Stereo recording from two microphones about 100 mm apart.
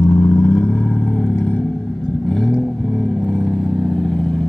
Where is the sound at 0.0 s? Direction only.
30° left (ahead or behind); by 1.3 s 15° left (ahead or behind).